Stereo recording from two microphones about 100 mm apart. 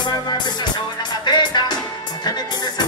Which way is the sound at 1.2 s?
50° left (ahead or behind).